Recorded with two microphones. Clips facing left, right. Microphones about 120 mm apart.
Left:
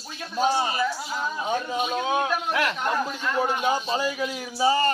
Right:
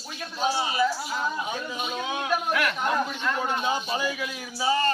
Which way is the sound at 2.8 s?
Centre (ahead or behind).